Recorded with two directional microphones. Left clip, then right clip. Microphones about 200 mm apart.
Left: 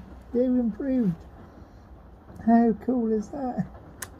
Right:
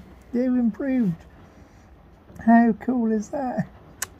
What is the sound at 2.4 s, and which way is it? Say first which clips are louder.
Speech: right 3 dB; 25° right (ahead or behind).